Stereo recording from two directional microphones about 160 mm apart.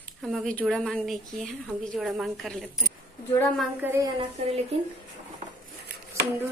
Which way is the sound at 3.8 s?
15° right (ahead or behind).